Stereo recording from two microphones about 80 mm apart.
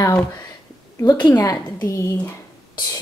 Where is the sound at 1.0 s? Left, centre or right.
Left.